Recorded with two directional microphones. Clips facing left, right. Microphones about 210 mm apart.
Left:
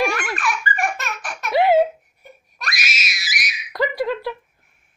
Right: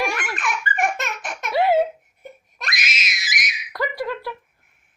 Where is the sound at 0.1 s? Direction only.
20° right (ahead or behind).